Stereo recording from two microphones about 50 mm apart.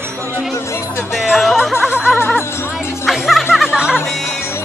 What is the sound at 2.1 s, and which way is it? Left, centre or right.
Music, left.